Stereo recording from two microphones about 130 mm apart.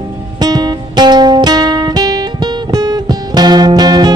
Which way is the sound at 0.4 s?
35° right (ahead or behind).